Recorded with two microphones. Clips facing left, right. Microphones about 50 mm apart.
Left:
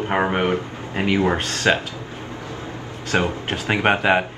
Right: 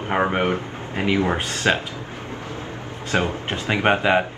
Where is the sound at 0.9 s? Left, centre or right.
Left.